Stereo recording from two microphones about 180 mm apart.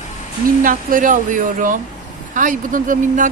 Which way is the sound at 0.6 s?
50° right (ahead or behind).